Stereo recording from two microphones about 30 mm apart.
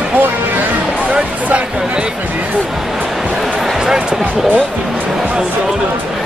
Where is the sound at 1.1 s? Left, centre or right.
Right.